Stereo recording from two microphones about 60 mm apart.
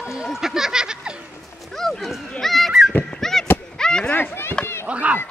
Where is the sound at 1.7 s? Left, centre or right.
Centre.